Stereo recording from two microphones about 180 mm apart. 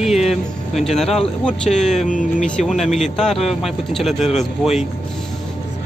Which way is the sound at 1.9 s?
45° left (ahead or behind).